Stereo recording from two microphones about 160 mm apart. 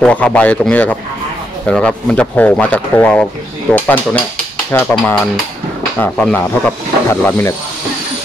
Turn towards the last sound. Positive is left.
turn(degrees=15)  # may be behind; listen again after turning